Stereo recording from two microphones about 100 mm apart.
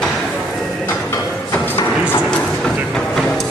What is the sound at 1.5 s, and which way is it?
Music, 20° left (ahead or behind).